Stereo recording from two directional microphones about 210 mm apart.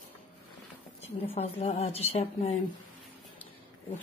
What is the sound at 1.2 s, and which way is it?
A woman's voice, 30° left (ahead or behind).